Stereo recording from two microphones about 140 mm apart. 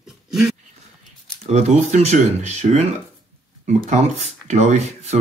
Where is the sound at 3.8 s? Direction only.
55° right (ahead or behind).